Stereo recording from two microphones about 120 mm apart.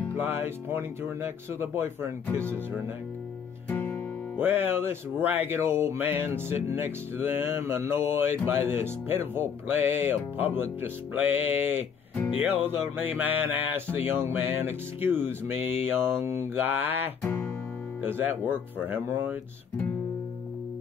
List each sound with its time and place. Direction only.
0.1 s music: 15° right (ahead or behind)
3.6 s music: 15° left (ahead or behind)
4.4 s music: 15° right (ahead or behind)